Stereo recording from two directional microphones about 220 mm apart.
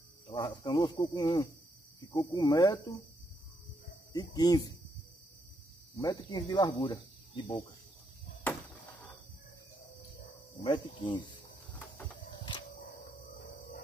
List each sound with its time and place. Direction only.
0.3 s speech: 20° left (ahead or behind)
2.0 s cricket: 20° left (ahead or behind)
4.1 s cricket: 15° left (ahead or behind)
5.9 s cricket: 15° left (ahead or behind)
10.5 s speech: 20° left (ahead or behind)